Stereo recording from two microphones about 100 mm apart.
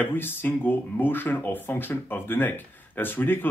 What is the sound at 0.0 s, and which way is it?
Speech, 20° left (ahead or behind).